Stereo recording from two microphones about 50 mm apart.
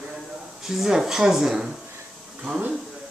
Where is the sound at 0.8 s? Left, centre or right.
Centre.